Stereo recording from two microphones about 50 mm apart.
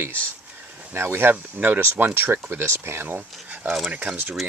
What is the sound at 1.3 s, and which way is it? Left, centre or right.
Speech, right.